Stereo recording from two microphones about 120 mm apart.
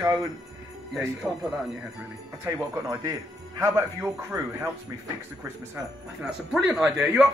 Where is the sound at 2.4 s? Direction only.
30° right (ahead or behind).